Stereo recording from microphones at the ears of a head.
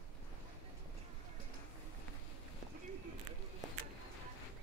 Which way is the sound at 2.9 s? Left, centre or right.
Right.